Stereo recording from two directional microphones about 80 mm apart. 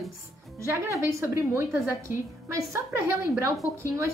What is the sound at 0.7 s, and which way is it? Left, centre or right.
A woman's voice, right.